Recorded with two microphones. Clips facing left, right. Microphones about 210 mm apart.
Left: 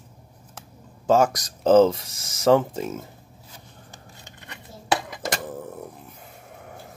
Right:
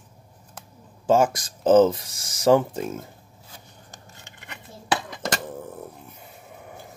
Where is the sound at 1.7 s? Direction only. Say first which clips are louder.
Even; 25° left (ahead or behind).